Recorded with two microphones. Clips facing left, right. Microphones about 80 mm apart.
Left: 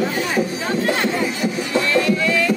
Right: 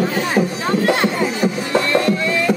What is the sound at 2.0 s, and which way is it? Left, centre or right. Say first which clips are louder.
Music: right 1 dB; right.